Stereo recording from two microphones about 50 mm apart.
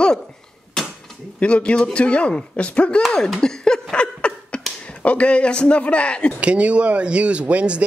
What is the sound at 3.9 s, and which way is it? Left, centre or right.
Laughter, left.